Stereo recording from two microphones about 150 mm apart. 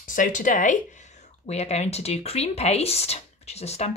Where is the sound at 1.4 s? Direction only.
45° left (ahead or behind).